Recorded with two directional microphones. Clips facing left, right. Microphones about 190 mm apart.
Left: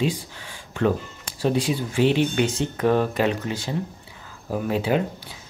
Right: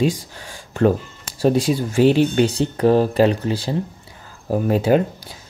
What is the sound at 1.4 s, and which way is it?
Speech, 40° right (ahead or behind).